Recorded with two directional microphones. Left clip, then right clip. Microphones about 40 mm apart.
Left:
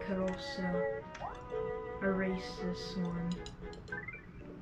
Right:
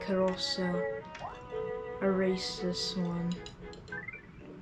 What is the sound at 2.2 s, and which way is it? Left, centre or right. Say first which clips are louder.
Music: right 6 dB; left.